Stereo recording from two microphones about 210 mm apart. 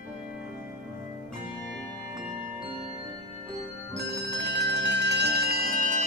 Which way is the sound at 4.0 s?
50° right (ahead or behind).